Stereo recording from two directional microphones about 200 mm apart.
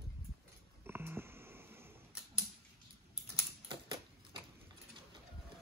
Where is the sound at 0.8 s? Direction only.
10° right (ahead or behind).